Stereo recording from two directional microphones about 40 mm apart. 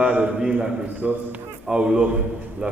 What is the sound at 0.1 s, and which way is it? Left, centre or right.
Speech, right.